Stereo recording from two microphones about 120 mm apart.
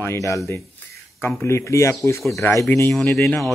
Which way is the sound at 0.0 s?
25° left (ahead or behind).